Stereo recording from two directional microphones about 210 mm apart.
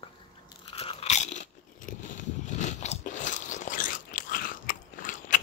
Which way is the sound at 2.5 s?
35° left (ahead or behind).